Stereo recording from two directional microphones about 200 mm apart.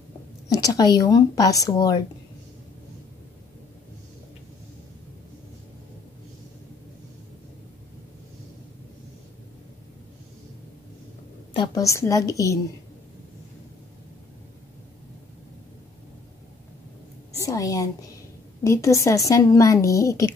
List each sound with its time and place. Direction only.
0.5 s a woman's voice: 20° left (ahead or behind)
11.5 s a woman's voice: 20° left (ahead or behind)
17.4 s a sound: 15° left (ahead or behind)
18.6 s a woman's voice: 15° left (ahead or behind)